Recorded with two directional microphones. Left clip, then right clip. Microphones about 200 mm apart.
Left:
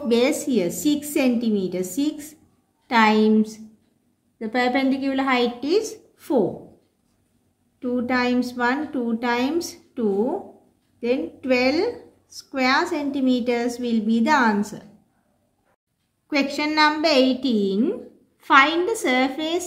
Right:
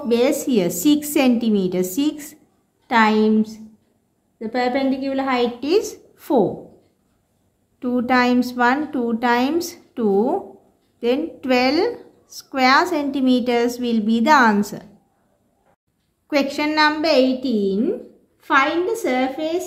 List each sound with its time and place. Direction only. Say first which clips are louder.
0.1 s a woman's voice: right 2 dB; 15° right (ahead or behind)
2.9 s a woman's voice: right 1 dB; 10° right (ahead or behind)
5.6 s a woman's voice: right 3 dB; 20° right (ahead or behind)
7.8 s a woman's voice: right 5 dB; 25° right (ahead or behind)
16.3 s a woman's voice: right 3 dB; 10° right (ahead or behind); by 19.6 s 5° left (ahead or behind)